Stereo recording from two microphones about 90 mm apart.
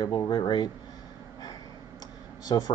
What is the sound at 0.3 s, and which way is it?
Speech, 50° left (ahead or behind).